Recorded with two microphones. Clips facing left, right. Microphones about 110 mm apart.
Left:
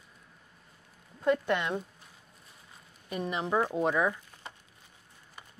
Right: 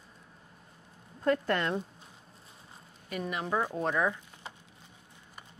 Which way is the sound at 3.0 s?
25° left (ahead or behind).